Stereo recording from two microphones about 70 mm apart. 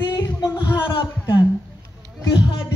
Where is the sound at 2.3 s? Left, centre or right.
Left.